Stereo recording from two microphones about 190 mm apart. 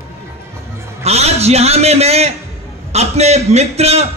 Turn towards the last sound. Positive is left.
turn(degrees=-35)  # may be behind; listen again after turning